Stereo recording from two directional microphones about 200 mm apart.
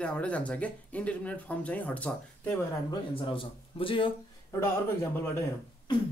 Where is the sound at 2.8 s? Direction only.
25° left (ahead or behind).